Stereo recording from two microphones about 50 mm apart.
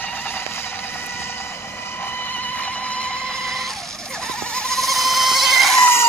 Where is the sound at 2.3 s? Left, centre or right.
Left.